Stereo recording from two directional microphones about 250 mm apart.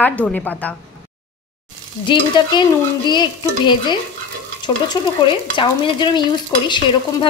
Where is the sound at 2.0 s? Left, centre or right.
Centre.